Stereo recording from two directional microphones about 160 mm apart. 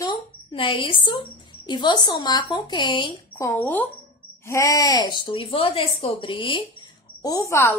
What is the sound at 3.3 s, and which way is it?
Speech, 15° left (ahead or behind).